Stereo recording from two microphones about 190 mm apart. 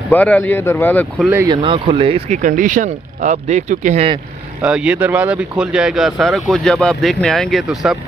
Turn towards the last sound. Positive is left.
turn(degrees=0)  # may be behind; listen again after turning